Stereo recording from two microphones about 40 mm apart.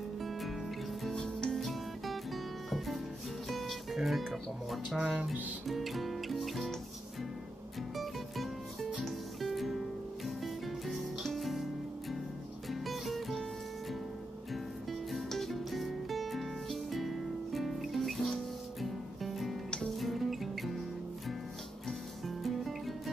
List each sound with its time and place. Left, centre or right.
0.2 s music: centre
1.1 s music: centre
1.5 s music: centre
3.9 s speech: centre
5.7 s music: centre
7.9 s music: centre
12.7 s music: centre
14.5 s music: centre
21.8 s music: centre